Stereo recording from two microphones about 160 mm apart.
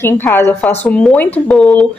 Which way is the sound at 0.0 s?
15° left (ahead or behind).